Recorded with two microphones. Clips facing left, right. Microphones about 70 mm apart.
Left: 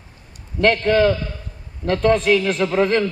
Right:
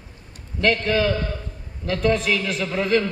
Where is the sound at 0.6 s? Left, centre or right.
Left.